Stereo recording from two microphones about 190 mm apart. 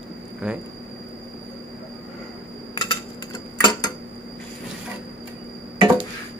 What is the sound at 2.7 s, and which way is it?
Typing, 25° left (ahead or behind).